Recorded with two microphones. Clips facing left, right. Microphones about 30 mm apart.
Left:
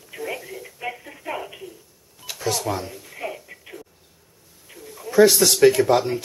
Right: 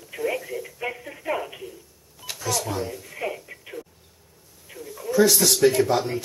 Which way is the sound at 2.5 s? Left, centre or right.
Left.